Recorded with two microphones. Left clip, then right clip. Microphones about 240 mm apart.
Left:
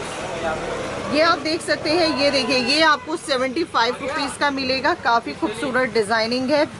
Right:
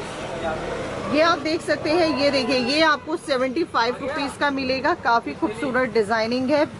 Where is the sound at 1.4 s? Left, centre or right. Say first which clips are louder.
Left 1 dB; centre.